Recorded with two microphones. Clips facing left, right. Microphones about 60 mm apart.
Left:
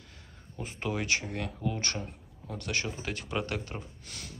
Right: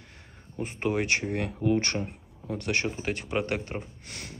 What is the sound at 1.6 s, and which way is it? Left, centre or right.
Speech, right.